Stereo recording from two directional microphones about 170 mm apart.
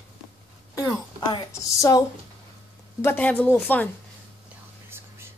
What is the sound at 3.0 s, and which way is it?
Speech, 10° left (ahead or behind).